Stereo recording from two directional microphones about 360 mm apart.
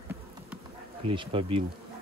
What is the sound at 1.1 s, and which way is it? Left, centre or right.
Speech, centre.